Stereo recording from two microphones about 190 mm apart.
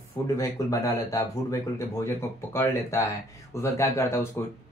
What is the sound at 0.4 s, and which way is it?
Speech, 15° left (ahead or behind).